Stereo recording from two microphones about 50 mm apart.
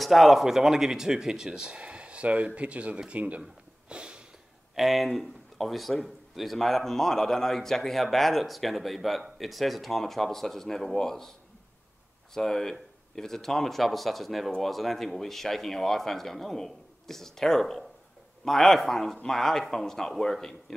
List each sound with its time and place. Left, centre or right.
0.0 s a man's voice: centre; by 3.4 s right
3.9 s sniff: centre
4.7 s a man's voice: centre
12.4 s a man's voice: centre